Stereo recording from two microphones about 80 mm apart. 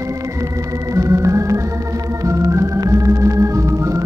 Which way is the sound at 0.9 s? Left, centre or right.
Right.